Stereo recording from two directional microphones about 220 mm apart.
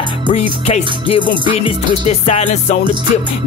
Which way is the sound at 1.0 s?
25° left (ahead or behind).